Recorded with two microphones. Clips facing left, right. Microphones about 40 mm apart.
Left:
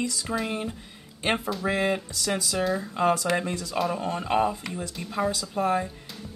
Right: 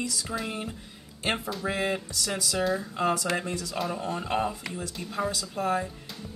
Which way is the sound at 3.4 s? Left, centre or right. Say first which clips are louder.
Left 2 dB; left.